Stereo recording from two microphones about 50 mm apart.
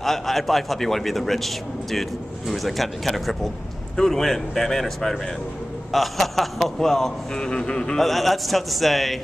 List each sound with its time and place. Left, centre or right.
0.0 s a man's voice: centre
7.3 s a man's voice: centre
8.0 s a man's voice: centre